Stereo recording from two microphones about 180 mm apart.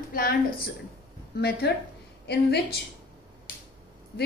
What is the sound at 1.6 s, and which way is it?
Speech, 65° left (ahead or behind).